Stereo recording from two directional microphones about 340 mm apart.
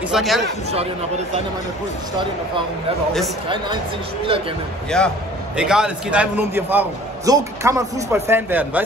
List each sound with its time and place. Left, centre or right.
0.1 s a man's voice: centre
0.7 s speech: centre
3.4 s speech: centre
4.9 s a man's voice: centre